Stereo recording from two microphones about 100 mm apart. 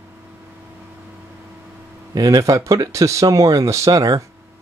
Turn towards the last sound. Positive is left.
turn(degrees=-35)  # may be behind; listen again after turning